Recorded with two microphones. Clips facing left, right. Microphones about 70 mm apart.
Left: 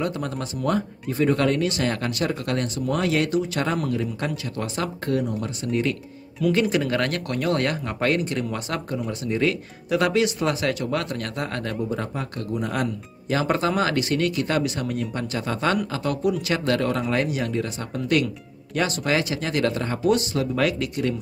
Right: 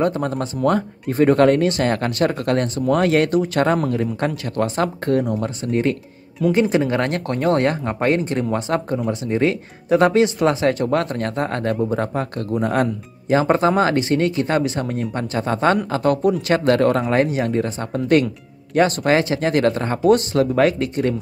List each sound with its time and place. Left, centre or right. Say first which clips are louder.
0.0 s speech: right 7 dB; right
6.4 s speech: right 4 dB; right